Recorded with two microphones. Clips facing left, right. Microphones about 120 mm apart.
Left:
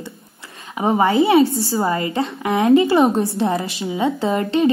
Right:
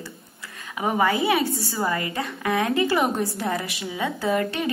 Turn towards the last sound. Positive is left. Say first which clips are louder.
# left 6 dB
turn(degrees=25)  # may be behind; listen again after turning